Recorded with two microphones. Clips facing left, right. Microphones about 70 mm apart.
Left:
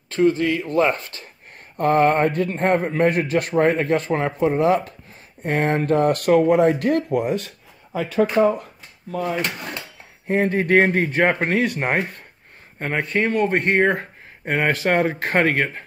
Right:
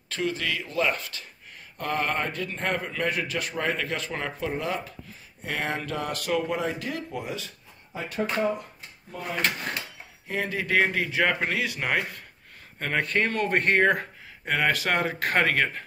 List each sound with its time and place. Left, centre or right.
0.1 s a man's voice: left
4.6 s a man's voice: left
8.4 s speech: left
10.2 s speech: left
12.7 s speech: centre